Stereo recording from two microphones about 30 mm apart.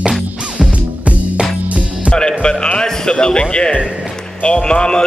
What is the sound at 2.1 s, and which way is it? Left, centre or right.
Music, left.